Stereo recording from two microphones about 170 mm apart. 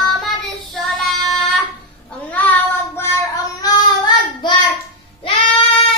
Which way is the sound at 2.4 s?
10° left (ahead or behind).